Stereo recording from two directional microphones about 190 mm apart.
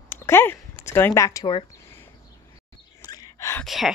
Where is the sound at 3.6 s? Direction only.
Centre (ahead or behind).